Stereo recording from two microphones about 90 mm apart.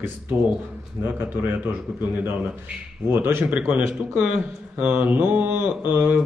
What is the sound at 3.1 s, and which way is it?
Speech, 25° right (ahead or behind).